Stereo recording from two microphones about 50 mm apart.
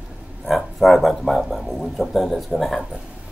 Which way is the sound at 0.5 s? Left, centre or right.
Centre.